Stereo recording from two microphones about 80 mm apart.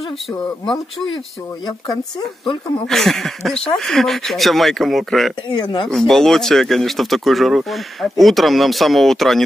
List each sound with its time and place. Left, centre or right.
1.7 s speech: left
2.4 s speech: left
2.9 s speech: centre
5.6 s speech: left
5.9 s speech: centre